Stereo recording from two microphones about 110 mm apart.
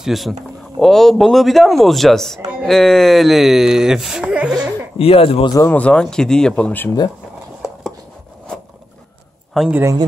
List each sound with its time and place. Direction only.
0.0 s speech: 5° right (ahead or behind)
4.9 s speech: 60° left (ahead or behind)
5.7 s speech: 10° left (ahead or behind)
9.6 s speech: centre (ahead or behind)